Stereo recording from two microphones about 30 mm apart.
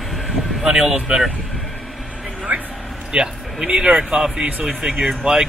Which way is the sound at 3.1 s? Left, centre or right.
Right.